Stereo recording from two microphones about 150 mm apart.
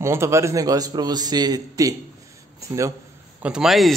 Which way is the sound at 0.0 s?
20° right (ahead or behind).